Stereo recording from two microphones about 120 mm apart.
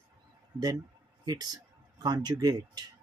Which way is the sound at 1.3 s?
35° right (ahead or behind).